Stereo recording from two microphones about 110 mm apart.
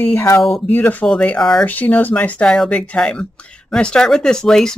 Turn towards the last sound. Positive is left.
turn(degrees=5)  # may be behind; listen again after turning